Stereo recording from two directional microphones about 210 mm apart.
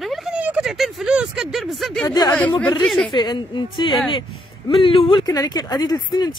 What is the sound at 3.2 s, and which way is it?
Speech, 20° left (ahead or behind).